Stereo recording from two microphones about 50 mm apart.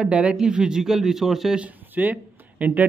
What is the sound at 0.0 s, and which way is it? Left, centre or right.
Speech, right.